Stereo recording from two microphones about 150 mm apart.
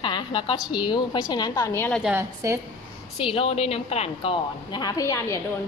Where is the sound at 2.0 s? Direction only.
15° right (ahead or behind).